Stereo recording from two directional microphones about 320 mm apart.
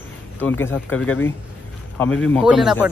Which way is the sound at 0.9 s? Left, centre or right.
Left.